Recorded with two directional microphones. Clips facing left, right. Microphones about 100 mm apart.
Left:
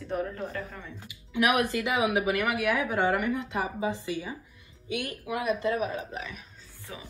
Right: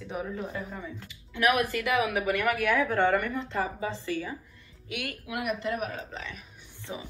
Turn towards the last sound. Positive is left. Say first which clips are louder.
# right 5 dB
turn(degrees=-20)  # may be behind; listen again after turning